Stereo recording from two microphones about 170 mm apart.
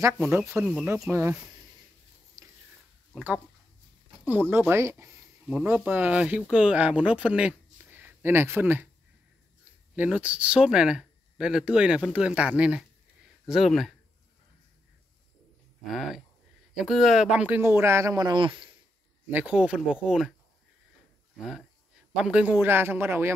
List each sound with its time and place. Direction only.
0.0 s speech: 10° right (ahead or behind)
2.4 s a sound: 20° right (ahead or behind)
4.3 s speech: 10° right (ahead or behind)
9.9 s speech: 10° right (ahead or behind)
15.9 s speech: centre (ahead or behind); by 18.8 s 30° right (ahead or behind)
19.3 s speech: 5° right (ahead or behind)
21.4 s speech: centre (ahead or behind)